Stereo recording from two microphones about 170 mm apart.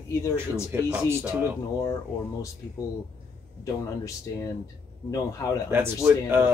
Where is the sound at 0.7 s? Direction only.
10° right (ahead or behind).